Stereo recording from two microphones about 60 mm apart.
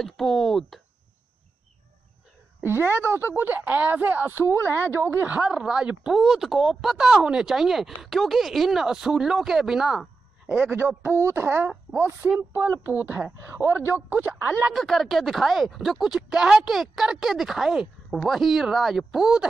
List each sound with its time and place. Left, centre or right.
0.0 s speech: centre
2.6 s a woman's voice: right
4.9 s speech: right
5.2 s speech: right
6.2 s speech: centre
10.8 s a woman's voice: right
11.9 s a woman's voice: right
14.7 s speech: centre